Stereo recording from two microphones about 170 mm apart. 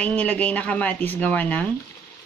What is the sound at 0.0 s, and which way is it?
A woman's voice, 10° left (ahead or behind).